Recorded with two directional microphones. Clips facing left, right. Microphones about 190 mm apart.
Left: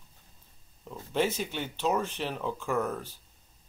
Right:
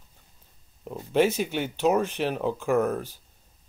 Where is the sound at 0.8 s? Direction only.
15° right (ahead or behind).